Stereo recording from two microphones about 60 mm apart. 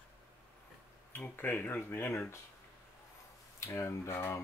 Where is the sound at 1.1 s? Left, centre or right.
Left.